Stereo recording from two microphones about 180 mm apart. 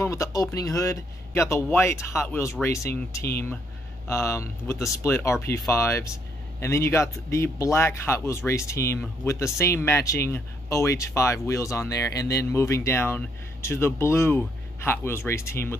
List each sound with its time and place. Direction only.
0.0 s speech: 15° left (ahead or behind)